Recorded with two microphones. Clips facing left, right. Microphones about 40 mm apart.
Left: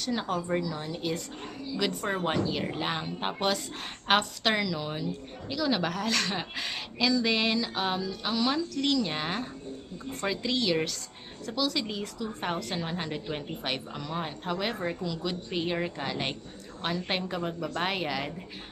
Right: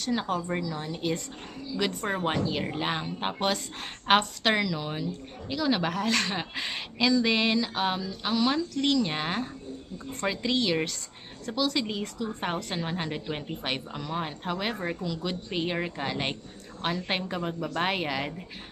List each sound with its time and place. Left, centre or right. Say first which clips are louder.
0.0 s a woman's voice: right 2 dB; centre